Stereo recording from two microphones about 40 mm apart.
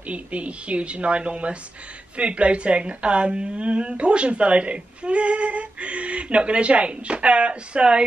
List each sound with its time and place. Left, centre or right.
0.1 s a woman's voice: right